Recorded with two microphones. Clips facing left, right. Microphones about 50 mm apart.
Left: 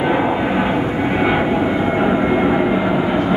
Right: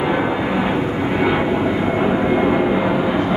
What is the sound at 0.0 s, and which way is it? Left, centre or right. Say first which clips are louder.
Vehicle: left 2 dB; centre.